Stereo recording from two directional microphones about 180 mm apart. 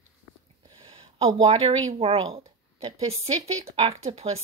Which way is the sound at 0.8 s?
30° right (ahead or behind).